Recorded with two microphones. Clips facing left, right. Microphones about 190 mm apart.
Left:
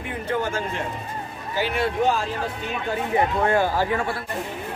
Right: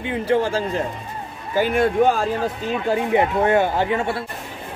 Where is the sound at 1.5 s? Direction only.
50° right (ahead or behind).